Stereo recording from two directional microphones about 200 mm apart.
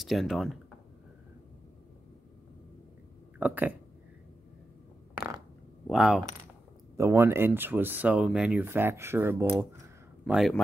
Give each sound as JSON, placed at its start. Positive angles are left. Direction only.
{"t": 0.0, "sound": "speech", "side_deg": 0}
{"t": 3.3, "sound": "speech", "side_deg": -10}
{"t": 5.1, "sound": "a sound", "side_deg": -10}
{"t": 5.9, "sound": "speech", "side_deg": 0}
{"t": 7.0, "sound": "speech", "side_deg": -10}